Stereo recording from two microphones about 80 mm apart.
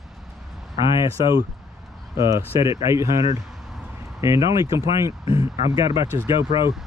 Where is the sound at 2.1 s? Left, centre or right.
Right.